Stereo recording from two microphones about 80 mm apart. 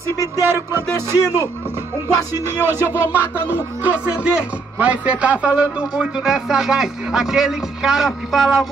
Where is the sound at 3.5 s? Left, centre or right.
Centre.